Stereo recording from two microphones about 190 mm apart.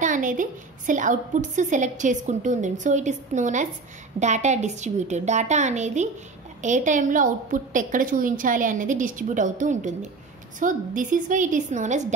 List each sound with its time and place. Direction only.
0.0 s a woman's voice: 45° right (ahead or behind)